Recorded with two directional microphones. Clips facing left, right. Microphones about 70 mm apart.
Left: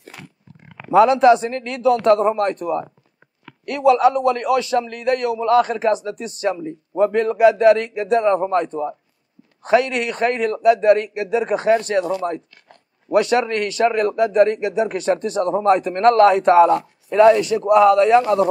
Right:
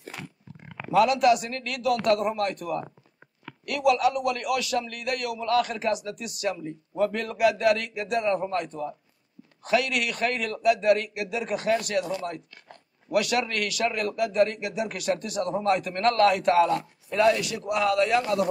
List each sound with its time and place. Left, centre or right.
0.9 s a man's voice: left
13.1 s a man's voice: left